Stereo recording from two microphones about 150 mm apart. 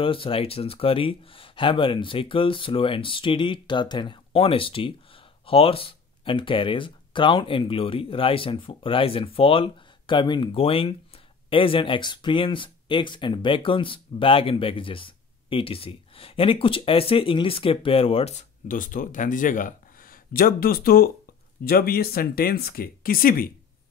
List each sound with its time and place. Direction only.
0.0 s speech: 35° left (ahead or behind)
18.7 s speech: 60° left (ahead or behind)